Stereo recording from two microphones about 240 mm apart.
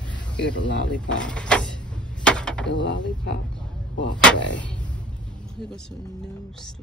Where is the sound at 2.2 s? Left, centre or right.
Centre.